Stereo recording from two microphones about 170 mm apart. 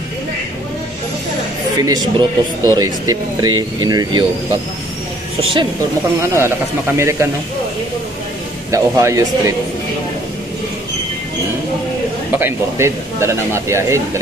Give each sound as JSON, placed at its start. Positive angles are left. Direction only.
{"t": 1.8, "sound": "speech", "side_deg": -20}
{"t": 6.3, "sound": "a man's voice", "side_deg": -15}
{"t": 8.7, "sound": "speech", "side_deg": -20}
{"t": 12.3, "sound": "a man's voice", "side_deg": -10}